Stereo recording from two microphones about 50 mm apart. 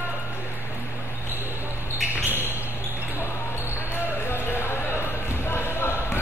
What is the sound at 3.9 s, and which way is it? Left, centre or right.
Basketball bounce, left.